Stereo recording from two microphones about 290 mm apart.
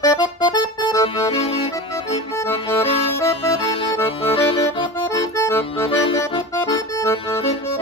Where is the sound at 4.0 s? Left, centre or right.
Centre.